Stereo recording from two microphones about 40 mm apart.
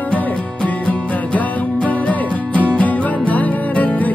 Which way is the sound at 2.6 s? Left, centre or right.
Left.